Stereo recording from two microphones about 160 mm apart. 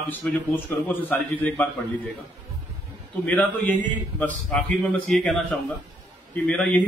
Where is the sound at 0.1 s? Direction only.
10° left (ahead or behind).